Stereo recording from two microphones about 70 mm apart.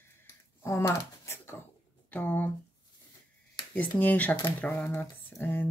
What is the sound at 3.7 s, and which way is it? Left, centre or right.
Speech, left.